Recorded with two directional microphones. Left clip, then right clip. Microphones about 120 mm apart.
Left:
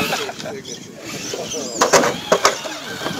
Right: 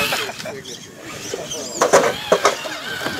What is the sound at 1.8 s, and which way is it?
Bird, 40° left (ahead or behind).